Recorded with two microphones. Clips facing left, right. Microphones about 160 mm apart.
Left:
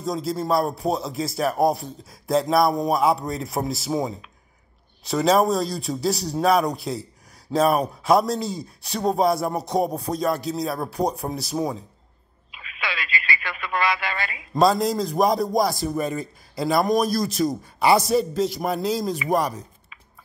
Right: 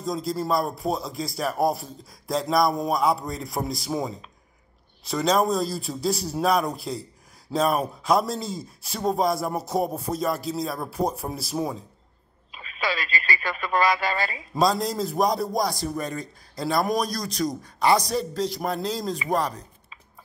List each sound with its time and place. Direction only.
0.0 s a man's voice: centre (ahead or behind)
12.4 s speech: 35° right (ahead or behind)
14.5 s a man's voice: centre (ahead or behind)